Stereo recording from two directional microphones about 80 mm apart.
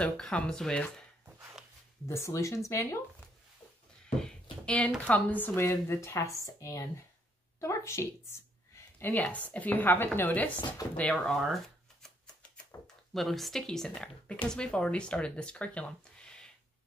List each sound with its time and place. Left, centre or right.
0.0 s speech: centre
2.0 s speech: left
4.0 s a sound: centre
4.7 s a woman's voice: centre; by 9.1 s left
9.1 s a woman's voice: centre
11.3 s shuffling cards: centre
12.8 s speech: centre